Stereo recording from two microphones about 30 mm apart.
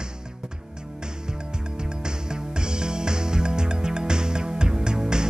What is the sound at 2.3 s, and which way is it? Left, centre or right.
Music, right.